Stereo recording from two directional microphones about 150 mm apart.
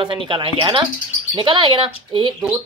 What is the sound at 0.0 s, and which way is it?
Speech, 35° right (ahead or behind).